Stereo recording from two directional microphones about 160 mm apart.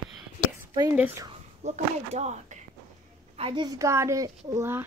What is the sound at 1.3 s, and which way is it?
Speech, 45° right (ahead or behind).